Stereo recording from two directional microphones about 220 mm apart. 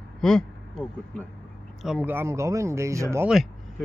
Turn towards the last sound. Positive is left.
turn(degrees=-10)  # may be behind; listen again after turning